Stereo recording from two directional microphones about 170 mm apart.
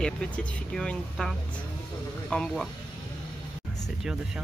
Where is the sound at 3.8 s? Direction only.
Centre (ahead or behind).